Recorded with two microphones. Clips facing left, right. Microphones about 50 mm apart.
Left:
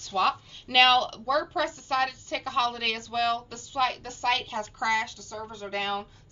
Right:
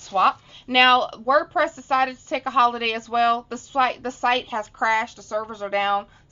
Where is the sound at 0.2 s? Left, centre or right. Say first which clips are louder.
Right 6 dB; centre; by 6.0 s right.